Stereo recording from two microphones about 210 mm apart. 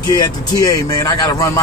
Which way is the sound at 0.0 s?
20° left (ahead or behind).